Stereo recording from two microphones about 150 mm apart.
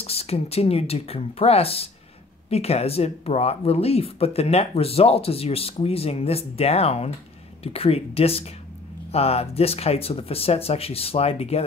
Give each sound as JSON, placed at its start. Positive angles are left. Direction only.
{"t": 0.0, "sound": "speech", "side_deg": 40}